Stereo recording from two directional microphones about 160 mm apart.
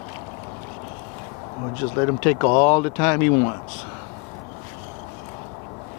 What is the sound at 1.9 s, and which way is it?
Speech, 15° left (ahead or behind).